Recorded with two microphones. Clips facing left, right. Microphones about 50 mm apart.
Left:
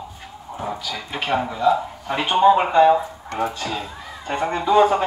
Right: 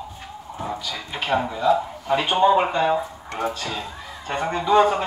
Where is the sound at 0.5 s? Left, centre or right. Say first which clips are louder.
Left 2 dB; centre.